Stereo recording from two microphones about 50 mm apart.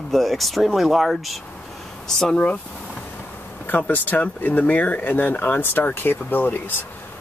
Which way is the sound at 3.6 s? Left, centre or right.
Left.